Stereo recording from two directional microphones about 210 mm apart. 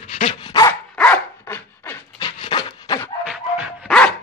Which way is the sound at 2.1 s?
20° left (ahead or behind).